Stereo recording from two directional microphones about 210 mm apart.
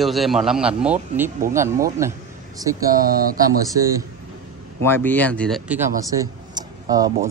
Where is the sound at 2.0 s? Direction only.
15° right (ahead or behind).